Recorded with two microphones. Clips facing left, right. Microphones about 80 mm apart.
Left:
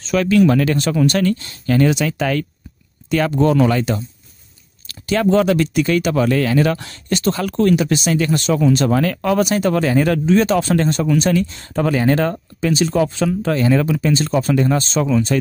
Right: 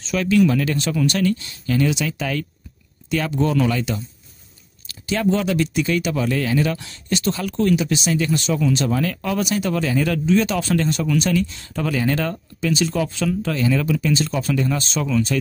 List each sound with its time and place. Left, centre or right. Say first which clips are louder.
0.0 s speech: left 3 dB; left
4.8 s speech: left 4 dB; left
8.8 s speech: left 5 dB; left